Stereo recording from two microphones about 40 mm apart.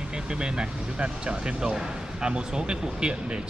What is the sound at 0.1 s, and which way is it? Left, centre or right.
Speech, right.